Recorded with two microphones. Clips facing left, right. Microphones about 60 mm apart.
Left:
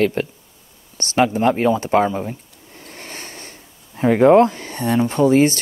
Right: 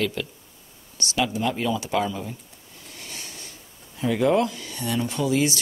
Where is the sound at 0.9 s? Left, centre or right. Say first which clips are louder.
Left 8 dB; left.